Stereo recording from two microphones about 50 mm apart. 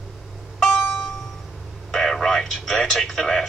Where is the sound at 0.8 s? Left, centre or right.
Centre.